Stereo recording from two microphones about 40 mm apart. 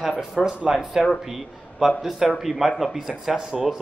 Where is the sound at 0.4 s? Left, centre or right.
Centre.